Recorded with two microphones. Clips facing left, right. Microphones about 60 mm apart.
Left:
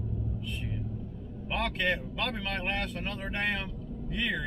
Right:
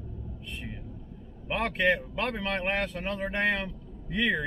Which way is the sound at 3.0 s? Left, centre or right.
Right.